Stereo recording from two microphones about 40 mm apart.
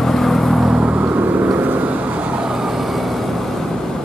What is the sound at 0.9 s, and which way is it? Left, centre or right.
Vehicle, right.